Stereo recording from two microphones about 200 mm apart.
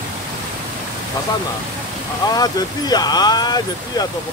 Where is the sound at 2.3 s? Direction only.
20° left (ahead or behind).